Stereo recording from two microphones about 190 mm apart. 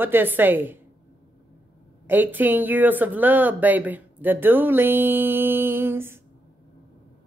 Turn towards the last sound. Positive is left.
turn(degrees=-10)  # may be behind; listen again after turning